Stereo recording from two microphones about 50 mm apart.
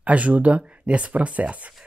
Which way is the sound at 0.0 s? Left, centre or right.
Right.